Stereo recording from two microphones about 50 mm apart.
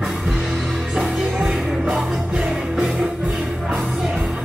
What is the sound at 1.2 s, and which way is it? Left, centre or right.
Music, centre.